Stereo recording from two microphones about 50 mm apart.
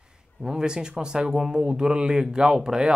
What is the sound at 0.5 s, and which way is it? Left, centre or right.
Speech, centre.